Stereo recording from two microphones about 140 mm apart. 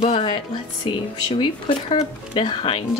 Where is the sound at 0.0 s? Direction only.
50° left (ahead or behind).